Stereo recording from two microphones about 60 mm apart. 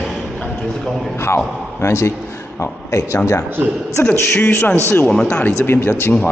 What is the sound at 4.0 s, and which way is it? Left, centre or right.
Speech, left.